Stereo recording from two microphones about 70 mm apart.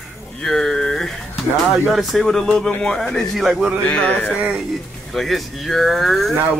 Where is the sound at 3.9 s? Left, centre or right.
Left.